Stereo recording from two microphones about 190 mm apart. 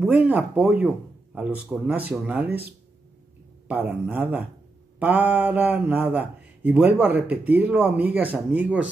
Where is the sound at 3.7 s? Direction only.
10° right (ahead or behind).